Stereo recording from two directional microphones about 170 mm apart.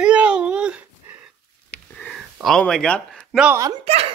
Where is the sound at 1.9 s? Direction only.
5° left (ahead or behind).